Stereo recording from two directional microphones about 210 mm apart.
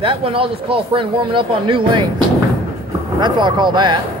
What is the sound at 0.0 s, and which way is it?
Speech, 25° right (ahead or behind).